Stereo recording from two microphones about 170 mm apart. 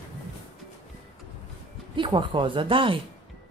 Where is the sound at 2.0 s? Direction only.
30° right (ahead or behind).